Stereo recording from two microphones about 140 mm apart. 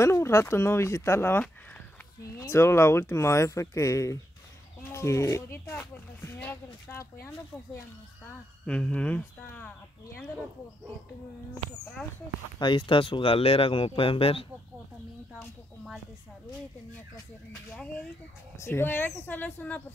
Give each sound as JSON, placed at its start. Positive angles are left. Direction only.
{"t": 0.0, "sound": "speech", "side_deg": 20}
{"t": 8.6, "sound": "speech", "side_deg": 5}
{"t": 12.5, "sound": "speech", "side_deg": 35}
{"t": 18.6, "sound": "speech", "side_deg": 15}